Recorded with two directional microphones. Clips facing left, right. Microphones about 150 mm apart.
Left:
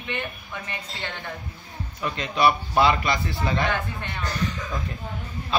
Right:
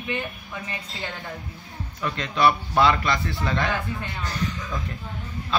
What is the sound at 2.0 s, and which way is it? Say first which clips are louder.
A man's voice: even; 10° left (ahead or behind).